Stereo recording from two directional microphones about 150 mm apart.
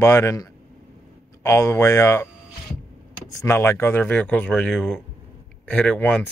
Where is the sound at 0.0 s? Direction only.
20° left (ahead or behind).